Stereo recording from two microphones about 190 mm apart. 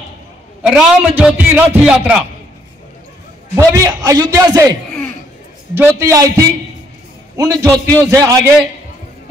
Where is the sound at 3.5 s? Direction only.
20° right (ahead or behind).